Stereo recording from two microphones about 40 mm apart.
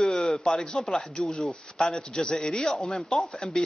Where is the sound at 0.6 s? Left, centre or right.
Centre.